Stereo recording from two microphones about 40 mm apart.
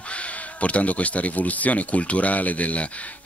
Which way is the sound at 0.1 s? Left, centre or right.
Left.